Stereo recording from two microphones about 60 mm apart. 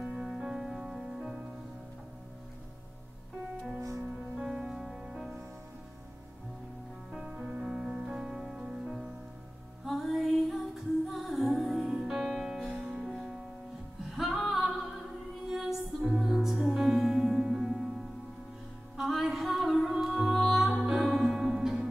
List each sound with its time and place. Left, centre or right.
0.0 s music: centre
4.5 s music: centre
7.1 s music: centre